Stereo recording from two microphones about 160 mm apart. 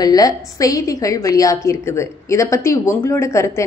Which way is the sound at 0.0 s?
25° left (ahead or behind).